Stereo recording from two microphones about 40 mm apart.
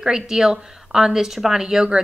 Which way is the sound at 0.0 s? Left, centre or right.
Centre.